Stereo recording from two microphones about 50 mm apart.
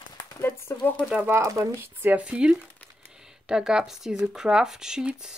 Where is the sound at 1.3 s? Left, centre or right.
Right.